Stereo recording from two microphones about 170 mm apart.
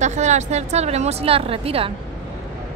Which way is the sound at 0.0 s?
40° right (ahead or behind).